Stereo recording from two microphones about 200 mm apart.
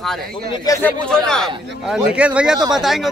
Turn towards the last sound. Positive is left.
turn(degrees=0)  # may be behind; listen again after turning